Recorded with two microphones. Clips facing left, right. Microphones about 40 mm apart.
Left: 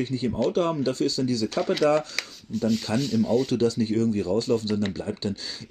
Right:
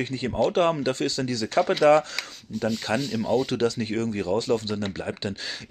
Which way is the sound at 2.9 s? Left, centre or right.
Centre.